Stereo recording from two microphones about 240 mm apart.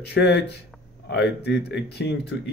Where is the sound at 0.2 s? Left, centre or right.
Left.